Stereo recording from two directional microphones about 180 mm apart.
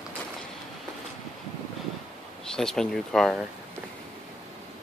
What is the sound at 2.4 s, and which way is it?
Speech, 5° left (ahead or behind).